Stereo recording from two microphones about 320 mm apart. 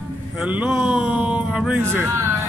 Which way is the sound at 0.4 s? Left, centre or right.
Centre.